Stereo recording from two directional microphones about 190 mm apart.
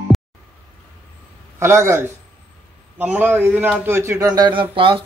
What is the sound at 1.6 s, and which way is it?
A man's voice, 15° right (ahead or behind).